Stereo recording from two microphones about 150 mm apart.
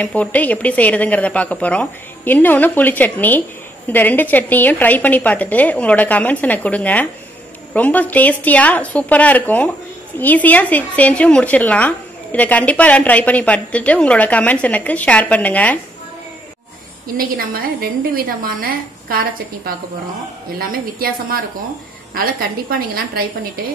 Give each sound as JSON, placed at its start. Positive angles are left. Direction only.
{"t": 0.0, "sound": "speech", "side_deg": 10}
{"t": 17.2, "sound": "a woman's voice", "side_deg": -75}